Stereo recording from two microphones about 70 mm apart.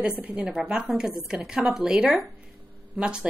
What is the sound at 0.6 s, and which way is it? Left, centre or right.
A woman's voice, centre.